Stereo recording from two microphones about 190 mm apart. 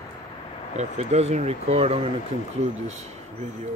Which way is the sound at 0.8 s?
35° right (ahead or behind).